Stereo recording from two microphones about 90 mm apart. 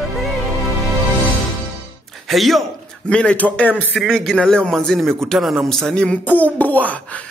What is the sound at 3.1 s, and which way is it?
Speech, 15° left (ahead or behind).